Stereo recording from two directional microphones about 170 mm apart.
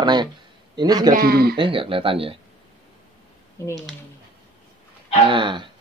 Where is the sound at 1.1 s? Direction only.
65° right (ahead or behind).